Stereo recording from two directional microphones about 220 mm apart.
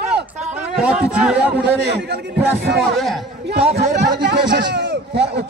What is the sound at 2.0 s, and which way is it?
Speech, 50° right (ahead or behind).